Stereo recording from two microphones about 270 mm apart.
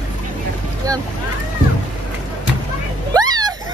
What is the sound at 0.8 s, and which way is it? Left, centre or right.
Speech, centre.